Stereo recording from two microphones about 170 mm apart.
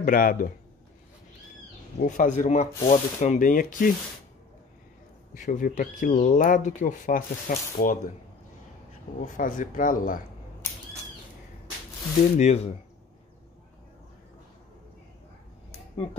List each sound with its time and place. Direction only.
0.0 s speech: 55° left (ahead or behind)
2.0 s speech: 45° left (ahead or behind)
5.3 s speech: 50° left (ahead or behind)
9.2 s speech: 50° left (ahead or behind)
12.4 s speech: 40° left (ahead or behind)